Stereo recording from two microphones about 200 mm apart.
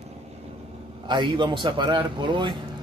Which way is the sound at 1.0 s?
25° right (ahead or behind).